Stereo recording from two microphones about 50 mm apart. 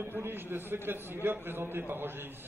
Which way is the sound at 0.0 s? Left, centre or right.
Right.